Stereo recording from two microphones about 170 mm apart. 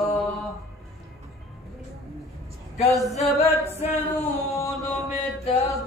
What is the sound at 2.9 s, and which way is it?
Male singing, centre (ahead or behind).